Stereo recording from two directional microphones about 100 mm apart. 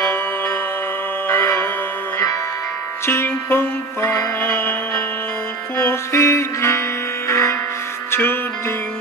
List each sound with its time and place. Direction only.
1.3 s music: 25° left (ahead or behind)
3.1 s music: 25° left (ahead or behind)